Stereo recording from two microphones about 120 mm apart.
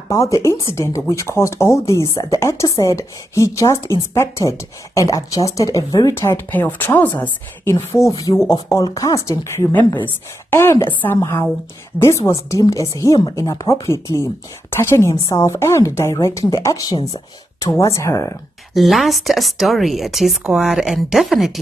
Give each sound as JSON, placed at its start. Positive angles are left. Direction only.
{"t": 0.1, "sound": "speech", "side_deg": 25}
{"t": 7.7, "sound": "a woman's voice", "side_deg": 25}
{"t": 18.7, "sound": "speech", "side_deg": 0}